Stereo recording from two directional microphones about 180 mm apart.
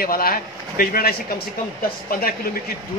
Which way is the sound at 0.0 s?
55° left (ahead or behind).